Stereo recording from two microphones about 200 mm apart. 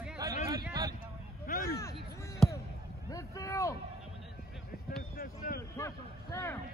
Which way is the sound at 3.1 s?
15° left (ahead or behind).